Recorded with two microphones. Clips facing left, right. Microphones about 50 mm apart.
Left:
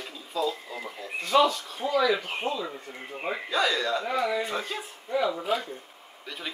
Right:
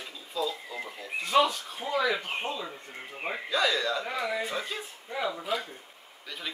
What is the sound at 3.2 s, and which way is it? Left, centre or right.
Speech, centre.